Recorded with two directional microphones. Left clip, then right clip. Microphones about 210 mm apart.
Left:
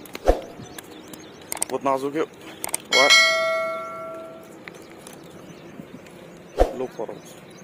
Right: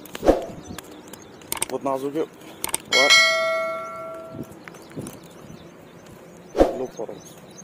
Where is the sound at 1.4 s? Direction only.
Centre (ahead or behind).